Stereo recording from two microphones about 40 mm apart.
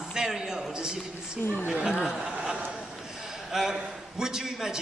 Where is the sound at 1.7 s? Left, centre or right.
Centre.